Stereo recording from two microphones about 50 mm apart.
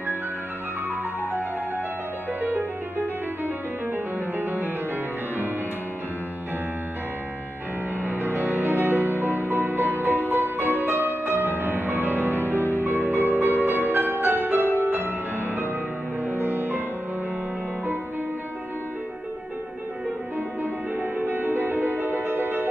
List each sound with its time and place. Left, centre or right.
2.4 s music: right
8.0 s music: right
16.3 s music: right
20.9 s music: right